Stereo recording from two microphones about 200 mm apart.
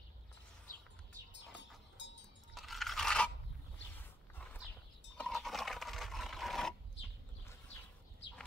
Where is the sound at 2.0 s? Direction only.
65° left (ahead or behind).